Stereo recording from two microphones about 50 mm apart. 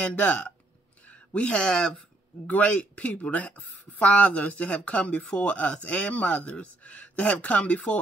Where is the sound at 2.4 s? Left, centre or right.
Left.